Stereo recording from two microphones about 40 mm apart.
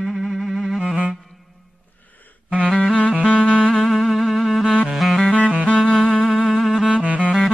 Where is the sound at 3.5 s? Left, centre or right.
Centre.